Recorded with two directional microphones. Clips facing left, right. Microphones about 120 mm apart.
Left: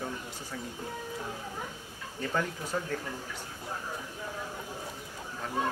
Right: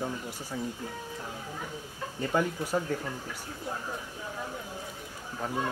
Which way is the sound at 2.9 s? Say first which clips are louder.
Right 3 dB; 15° right (ahead or behind).